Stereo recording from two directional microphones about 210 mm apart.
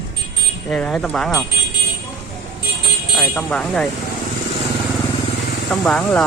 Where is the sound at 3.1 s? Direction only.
5° left (ahead or behind).